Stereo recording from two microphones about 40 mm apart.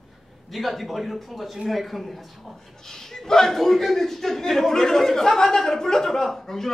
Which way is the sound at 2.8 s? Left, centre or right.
Centre.